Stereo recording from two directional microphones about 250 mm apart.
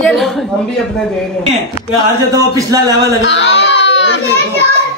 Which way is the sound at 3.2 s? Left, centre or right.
Left.